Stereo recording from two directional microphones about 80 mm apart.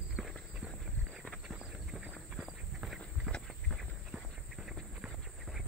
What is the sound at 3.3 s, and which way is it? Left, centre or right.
Walk, right.